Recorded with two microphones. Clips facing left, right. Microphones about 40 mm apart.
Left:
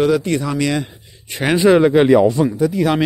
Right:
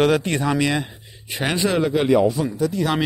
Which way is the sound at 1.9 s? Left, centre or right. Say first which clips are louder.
Left 6 dB; left.